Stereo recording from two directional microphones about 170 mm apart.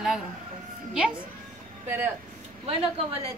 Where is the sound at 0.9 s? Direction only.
5° right (ahead or behind).